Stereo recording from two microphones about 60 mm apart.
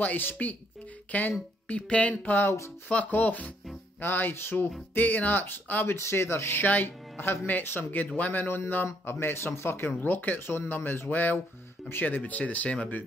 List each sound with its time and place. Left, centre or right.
0.0 s speech: left
4.9 s speech: left
5.9 s speech: left
6.6 s speech: left